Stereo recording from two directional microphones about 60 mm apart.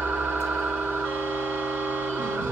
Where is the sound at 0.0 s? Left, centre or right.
Right.